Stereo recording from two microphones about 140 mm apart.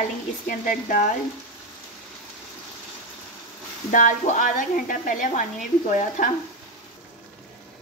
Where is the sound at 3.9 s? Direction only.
70° left (ahead or behind).